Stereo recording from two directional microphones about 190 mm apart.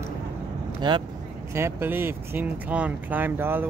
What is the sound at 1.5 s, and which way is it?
Speech, 10° right (ahead or behind).